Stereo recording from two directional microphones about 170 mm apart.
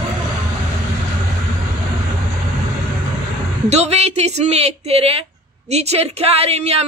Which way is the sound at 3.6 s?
40° right (ahead or behind).